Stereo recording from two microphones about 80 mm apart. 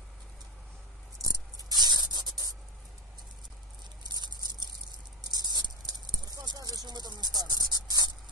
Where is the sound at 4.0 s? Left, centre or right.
Right.